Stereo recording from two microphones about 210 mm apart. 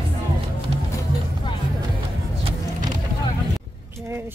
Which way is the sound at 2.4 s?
20° right (ahead or behind).